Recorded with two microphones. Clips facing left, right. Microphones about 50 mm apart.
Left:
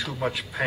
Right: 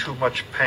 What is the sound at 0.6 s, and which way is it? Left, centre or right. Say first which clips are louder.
Speech: right 6 dB; right.